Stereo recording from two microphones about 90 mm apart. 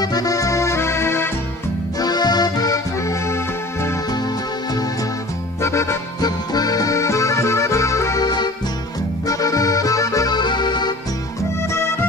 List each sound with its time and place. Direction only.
0.0 s accordion: 45° left (ahead or behind); by 1.3 s 30° left (ahead or behind)
2.0 s accordion: 50° left (ahead or behind)
5.6 s music: 30° left (ahead or behind)
6.2 s accordion: 45° left (ahead or behind)
8.2 s accordion: 50° left (ahead or behind)
9.3 s accordion: 40° left (ahead or behind)
10.3 s accordion: 55° left (ahead or behind)
11.7 s music: 30° left (ahead or behind)